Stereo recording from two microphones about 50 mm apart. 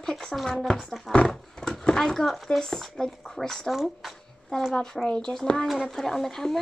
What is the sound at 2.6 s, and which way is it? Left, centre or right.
Speech, centre.